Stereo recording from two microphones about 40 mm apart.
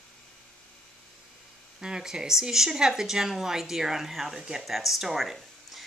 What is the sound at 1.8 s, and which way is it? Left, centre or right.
Speech, centre.